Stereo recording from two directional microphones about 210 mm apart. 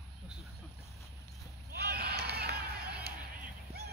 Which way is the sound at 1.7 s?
50° right (ahead or behind).